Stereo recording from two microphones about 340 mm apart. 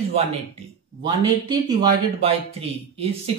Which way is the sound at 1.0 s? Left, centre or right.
Centre.